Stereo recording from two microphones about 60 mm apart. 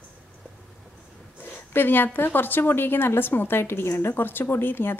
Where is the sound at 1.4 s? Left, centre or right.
Left.